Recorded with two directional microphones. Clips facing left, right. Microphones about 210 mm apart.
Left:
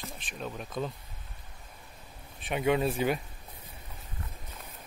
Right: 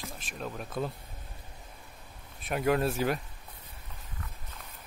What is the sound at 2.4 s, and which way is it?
Speech, centre (ahead or behind).